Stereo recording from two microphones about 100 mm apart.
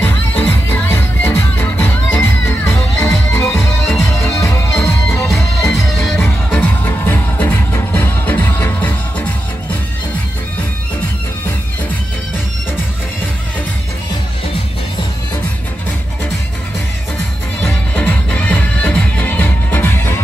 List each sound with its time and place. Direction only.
0.0 s music: 20° left (ahead or behind)
6.6 s music: 15° left (ahead or behind)
17.6 s music: 25° left (ahead or behind)